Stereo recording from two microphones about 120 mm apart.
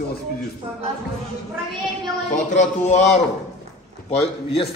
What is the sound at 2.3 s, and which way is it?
Speech, 85° left.